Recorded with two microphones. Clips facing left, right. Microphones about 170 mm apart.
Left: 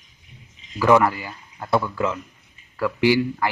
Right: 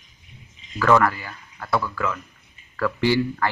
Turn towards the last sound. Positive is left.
turn(degrees=15)  # may be behind; listen again after turning